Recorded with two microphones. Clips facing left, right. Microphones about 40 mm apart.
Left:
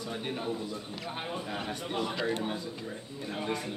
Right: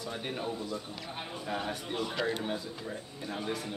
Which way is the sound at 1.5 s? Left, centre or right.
Centre.